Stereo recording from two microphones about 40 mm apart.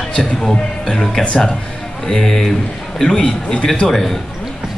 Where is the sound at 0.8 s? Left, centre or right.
Centre.